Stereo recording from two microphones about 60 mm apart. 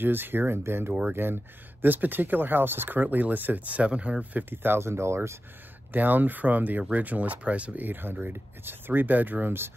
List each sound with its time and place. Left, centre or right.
0.0 s speech: right
5.9 s speech: right